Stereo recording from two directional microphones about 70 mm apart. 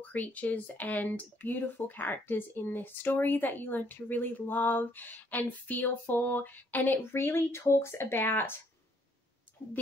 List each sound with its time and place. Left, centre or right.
0.0 s speech: left